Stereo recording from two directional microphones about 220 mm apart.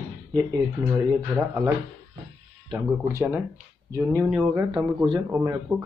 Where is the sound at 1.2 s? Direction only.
15° right (ahead or behind).